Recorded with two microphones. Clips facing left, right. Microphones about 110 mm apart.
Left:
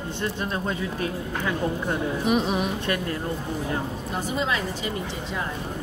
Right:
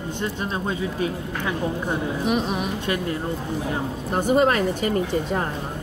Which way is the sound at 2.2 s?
Centre (ahead or behind).